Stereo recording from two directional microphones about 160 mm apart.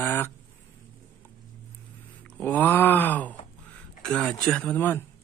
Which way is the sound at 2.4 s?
10° left (ahead or behind).